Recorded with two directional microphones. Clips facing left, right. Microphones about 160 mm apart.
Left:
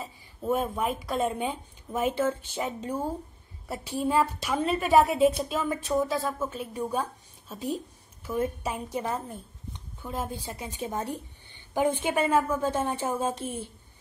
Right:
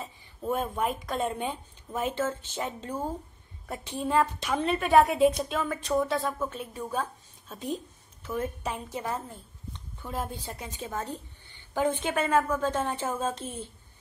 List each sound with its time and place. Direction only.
0.0 s a woman's voice: 5° left (ahead or behind)
6.7 s a woman's voice: 15° left (ahead or behind)
10.0 s a woman's voice: centre (ahead or behind)